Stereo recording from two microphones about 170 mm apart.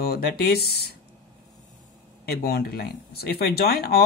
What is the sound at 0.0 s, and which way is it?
Speech, 65° left (ahead or behind).